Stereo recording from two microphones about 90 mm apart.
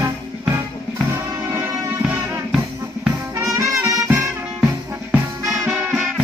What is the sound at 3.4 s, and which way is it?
Music, 35° right (ahead or behind).